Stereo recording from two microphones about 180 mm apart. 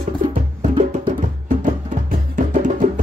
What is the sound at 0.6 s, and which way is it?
Music, 35° right (ahead or behind).